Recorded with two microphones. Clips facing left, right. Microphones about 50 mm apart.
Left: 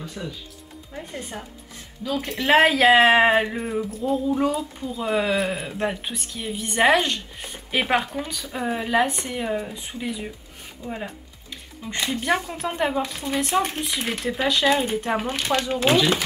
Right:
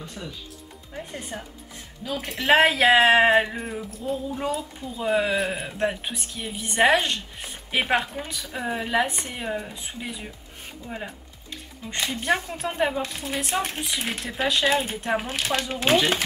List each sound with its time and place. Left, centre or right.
0.2 s speech: centre
0.9 s a woman's voice: centre
8.5 s a woman's voice: centre
10.9 s music: centre
12.3 s a woman's voice: centre